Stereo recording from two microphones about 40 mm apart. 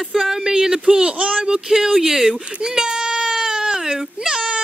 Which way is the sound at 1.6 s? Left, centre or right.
Centre.